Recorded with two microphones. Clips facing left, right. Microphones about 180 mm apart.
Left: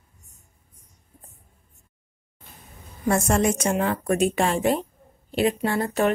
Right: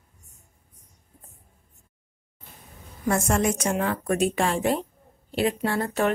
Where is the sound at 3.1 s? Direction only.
30° left (ahead or behind).